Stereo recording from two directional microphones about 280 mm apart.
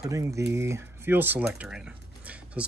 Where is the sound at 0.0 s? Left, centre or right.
Centre.